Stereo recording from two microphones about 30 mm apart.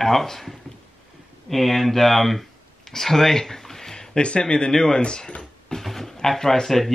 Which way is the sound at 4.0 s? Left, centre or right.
Left.